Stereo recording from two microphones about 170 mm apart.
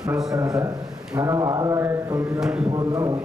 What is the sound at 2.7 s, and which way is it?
Mantra, 20° right (ahead or behind).